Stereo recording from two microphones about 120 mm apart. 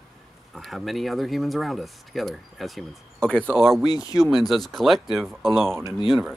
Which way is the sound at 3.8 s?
30° left (ahead or behind).